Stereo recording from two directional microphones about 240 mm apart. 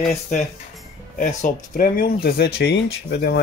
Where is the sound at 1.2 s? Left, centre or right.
Left.